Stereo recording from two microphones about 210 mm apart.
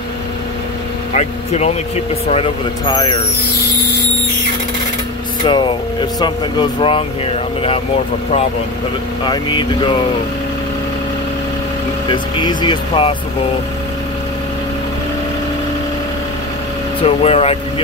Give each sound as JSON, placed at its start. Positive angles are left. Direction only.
{"t": 1.1, "sound": "speech", "side_deg": 30}
{"t": 5.4, "sound": "speech", "side_deg": 20}
{"t": 9.2, "sound": "speech", "side_deg": 20}
{"t": 12.1, "sound": "speech", "side_deg": 20}
{"t": 17.0, "sound": "speech", "side_deg": 30}